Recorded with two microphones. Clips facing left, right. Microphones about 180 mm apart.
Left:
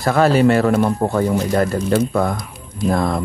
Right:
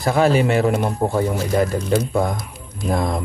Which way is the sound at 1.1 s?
10° right (ahead or behind).